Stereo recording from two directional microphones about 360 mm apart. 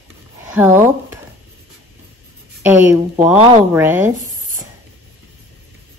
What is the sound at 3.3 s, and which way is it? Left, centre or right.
Speech, centre.